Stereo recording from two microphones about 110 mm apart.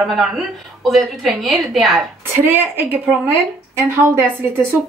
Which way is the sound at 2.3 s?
20° right (ahead or behind).